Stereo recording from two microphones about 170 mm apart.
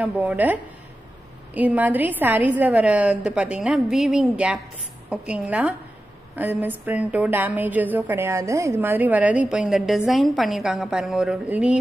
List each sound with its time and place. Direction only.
0.0 s a woman's voice: 5° right (ahead or behind)